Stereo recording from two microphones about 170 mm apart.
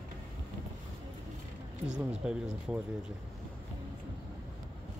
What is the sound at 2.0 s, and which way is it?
Speech, 5° right (ahead or behind).